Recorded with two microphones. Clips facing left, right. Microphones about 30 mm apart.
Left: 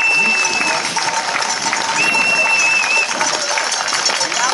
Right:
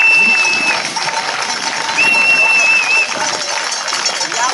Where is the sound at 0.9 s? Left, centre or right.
Right.